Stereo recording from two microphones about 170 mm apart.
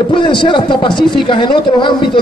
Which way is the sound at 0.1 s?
30° left (ahead or behind).